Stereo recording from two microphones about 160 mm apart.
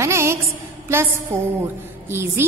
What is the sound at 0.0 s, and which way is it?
Music, 15° right (ahead or behind).